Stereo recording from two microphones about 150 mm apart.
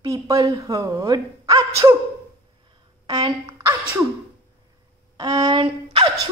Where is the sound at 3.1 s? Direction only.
30° right (ahead or behind).